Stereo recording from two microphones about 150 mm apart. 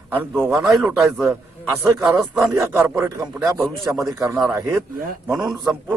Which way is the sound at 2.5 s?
20° right (ahead or behind).